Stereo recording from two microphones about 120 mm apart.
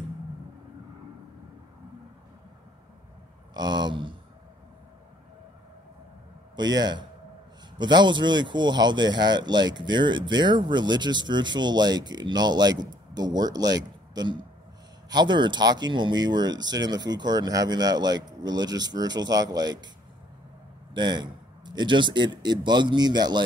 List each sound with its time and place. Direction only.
3.5 s speech: 35° right (ahead or behind)
6.5 s speech: 35° right (ahead or behind)
20.9 s speech: 40° right (ahead or behind)